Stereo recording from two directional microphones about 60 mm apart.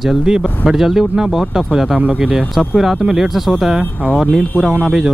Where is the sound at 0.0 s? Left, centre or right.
Centre.